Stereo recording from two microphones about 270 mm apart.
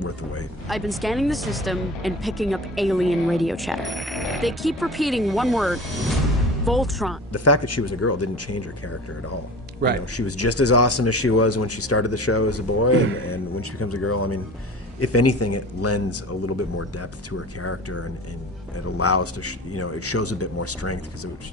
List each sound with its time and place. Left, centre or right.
0.7 s speech: centre
7.3 s speech: left
10.1 s speech: left